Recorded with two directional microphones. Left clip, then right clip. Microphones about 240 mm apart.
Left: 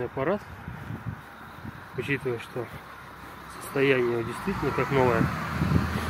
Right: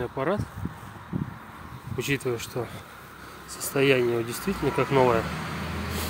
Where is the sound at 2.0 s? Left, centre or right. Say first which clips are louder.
Right 1 dB; centre.